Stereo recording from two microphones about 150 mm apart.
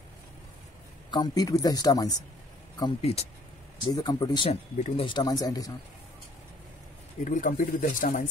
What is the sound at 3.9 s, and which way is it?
Speech, 30° left (ahead or behind).